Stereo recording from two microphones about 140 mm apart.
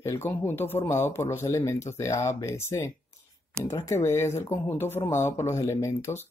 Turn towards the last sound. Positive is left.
turn(degrees=20)  # may be behind; listen again after turning